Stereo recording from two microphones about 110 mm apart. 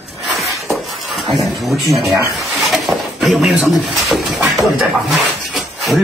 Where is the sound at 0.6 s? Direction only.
Centre (ahead or behind).